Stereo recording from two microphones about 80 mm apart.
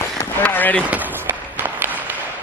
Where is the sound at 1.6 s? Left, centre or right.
Right.